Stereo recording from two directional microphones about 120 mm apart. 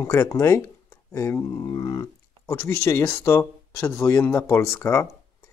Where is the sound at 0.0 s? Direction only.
30° left (ahead or behind).